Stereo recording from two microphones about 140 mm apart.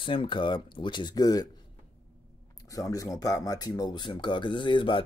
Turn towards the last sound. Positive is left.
turn(degrees=35)  # may be behind; listen again after turning